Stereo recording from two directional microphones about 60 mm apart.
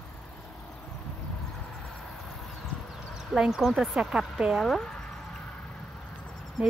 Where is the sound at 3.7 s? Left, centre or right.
Centre.